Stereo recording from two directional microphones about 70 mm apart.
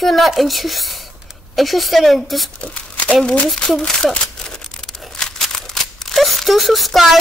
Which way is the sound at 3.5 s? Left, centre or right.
Centre.